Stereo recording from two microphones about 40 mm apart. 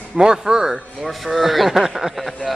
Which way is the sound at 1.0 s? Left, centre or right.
Centre.